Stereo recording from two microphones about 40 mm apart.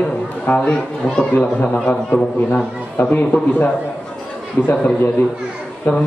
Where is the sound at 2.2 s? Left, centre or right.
Left.